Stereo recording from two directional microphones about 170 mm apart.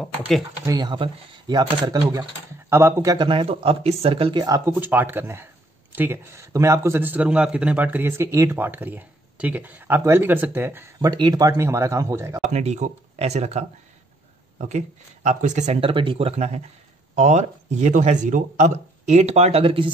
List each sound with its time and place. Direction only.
0.7 s a man's voice: 25° right (ahead or behind)
11.1 s a man's voice: 25° right (ahead or behind)
12.4 s speech: 40° right (ahead or behind)
14.7 s speech: 45° right (ahead or behind)